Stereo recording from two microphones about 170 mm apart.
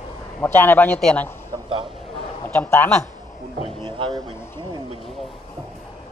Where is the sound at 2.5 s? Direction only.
10° left (ahead or behind).